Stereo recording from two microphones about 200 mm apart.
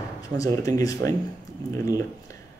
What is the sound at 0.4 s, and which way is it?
Speech, 15° left (ahead or behind).